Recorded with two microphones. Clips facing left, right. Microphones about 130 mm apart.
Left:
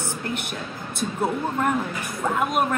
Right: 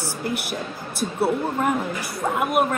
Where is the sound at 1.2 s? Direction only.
10° right (ahead or behind).